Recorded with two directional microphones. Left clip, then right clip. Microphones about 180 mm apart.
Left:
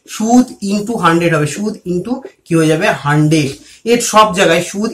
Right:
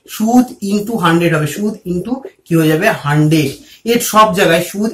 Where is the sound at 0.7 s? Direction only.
25° left (ahead or behind).